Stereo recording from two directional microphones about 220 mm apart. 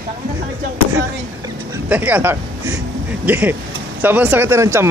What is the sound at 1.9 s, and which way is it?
A man's voice, 5° right (ahead or behind).